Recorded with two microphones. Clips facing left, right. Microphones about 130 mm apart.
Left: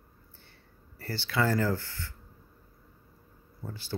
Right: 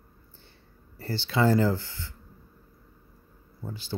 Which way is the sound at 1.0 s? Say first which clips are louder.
Right 4 dB; 25° right (ahead or behind).